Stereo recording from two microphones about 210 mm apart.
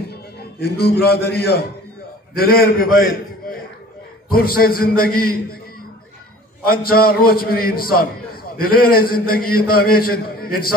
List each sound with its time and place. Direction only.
0.1 s a man's voice: 50° left (ahead or behind)
6.7 s a man's voice: 45° left (ahead or behind)